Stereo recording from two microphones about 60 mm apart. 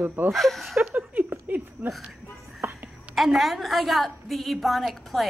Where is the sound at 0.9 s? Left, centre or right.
Right.